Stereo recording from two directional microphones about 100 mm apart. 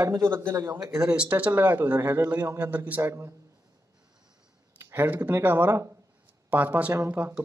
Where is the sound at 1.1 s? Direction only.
15° right (ahead or behind).